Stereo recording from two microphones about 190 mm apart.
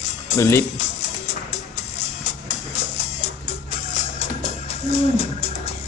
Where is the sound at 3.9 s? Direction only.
35° left (ahead or behind).